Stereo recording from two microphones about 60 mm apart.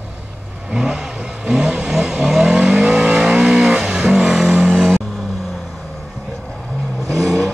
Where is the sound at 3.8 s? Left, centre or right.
Centre.